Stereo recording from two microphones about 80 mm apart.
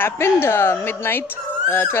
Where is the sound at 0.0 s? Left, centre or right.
Left.